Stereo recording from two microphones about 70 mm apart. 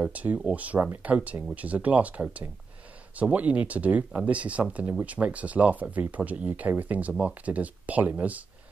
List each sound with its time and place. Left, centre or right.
0.0 s speech: right